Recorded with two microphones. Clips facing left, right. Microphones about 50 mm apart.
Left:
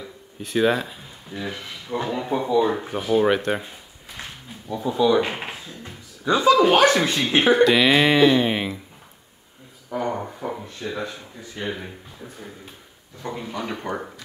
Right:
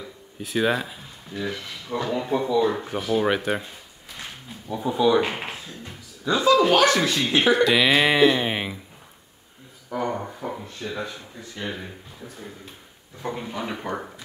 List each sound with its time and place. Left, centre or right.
0.0 s a sound: centre
1.3 s speech: centre
4.6 s speech: centre
5.3 s a sound: centre
6.3 s speech: centre
7.3 s speech: left
7.6 s speech: centre
9.8 s a sound: centre
11.5 s speech: centre
13.2 s speech: centre